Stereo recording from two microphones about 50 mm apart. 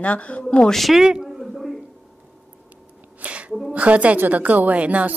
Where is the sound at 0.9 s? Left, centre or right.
Centre.